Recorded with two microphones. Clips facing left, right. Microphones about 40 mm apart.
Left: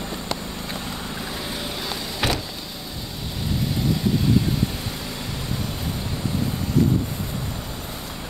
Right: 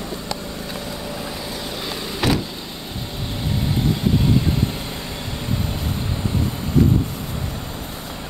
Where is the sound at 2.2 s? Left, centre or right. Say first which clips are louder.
Right 4 dB; centre.